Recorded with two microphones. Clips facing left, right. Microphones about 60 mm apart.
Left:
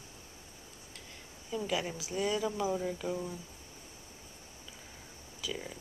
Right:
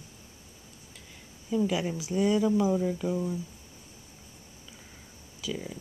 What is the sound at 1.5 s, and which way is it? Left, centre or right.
Speech, centre.